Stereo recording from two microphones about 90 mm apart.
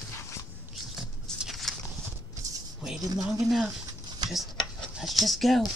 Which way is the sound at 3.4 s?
5° right (ahead or behind).